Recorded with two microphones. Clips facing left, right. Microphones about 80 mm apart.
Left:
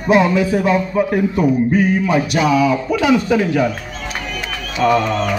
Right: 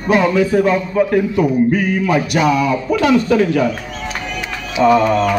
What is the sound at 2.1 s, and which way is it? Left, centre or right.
A man's voice, centre.